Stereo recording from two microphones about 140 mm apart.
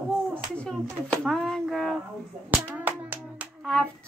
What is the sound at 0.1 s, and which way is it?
Speech, 5° left (ahead or behind).